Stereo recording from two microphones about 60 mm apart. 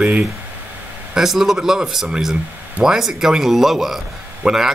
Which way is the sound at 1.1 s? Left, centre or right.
Centre.